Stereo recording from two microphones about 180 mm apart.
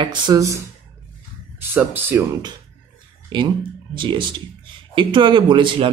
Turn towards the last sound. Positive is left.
turn(degrees=-25)  # may be behind; listen again after turning